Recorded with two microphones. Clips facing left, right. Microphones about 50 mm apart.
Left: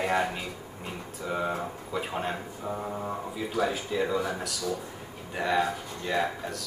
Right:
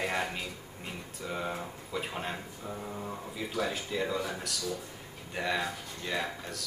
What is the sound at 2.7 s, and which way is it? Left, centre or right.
Mantra, left.